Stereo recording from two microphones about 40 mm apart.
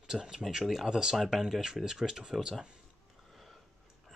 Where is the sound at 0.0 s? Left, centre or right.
Centre.